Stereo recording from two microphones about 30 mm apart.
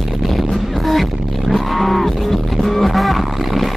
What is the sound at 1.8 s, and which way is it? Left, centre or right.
Music, centre.